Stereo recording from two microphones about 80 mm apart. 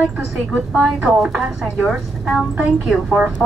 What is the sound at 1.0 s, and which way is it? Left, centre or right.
A woman's voice, centre.